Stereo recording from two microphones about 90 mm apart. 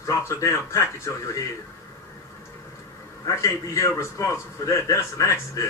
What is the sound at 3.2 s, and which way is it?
Speech, 35° left (ahead or behind).